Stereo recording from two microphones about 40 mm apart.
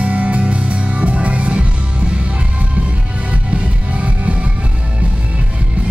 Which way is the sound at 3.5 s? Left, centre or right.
Right.